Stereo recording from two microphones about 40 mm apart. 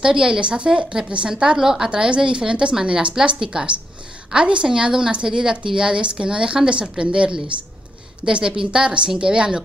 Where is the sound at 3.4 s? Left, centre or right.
Right.